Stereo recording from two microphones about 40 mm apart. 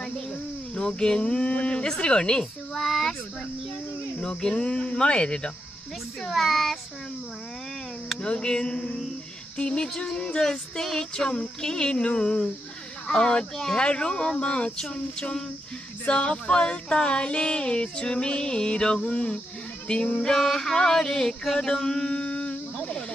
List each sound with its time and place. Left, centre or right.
0.7 s speech: left
2.7 s a child's voice: centre
4.2 s speech: centre
6.2 s a child's voice: centre
8.2 s speech: left
20.2 s a sound: centre